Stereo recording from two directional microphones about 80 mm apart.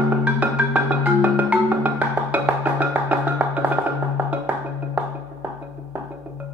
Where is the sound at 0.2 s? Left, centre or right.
Right.